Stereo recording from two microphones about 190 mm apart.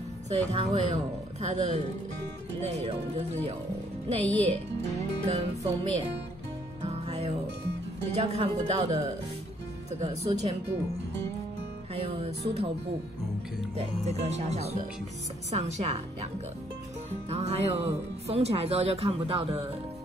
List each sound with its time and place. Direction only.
0.3 s speech: 35° right (ahead or behind)
6.8 s music: 30° right (ahead or behind)
8.2 s speech: 30° right (ahead or behind)
11.9 s music: 30° right (ahead or behind)
13.7 s speech: 35° right (ahead or behind)
17.3 s speech: 35° right (ahead or behind)